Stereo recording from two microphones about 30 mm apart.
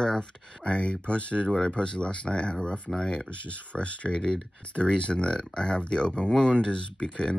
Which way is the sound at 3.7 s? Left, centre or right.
Left.